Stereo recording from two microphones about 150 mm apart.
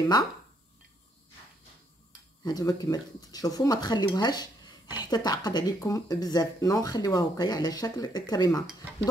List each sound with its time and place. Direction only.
2.4 s speech: 25° left (ahead or behind)